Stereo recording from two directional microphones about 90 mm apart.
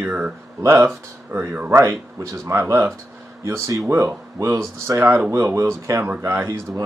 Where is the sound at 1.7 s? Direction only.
35° right (ahead or behind).